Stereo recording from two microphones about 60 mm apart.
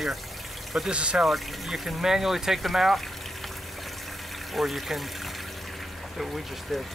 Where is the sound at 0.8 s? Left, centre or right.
Centre.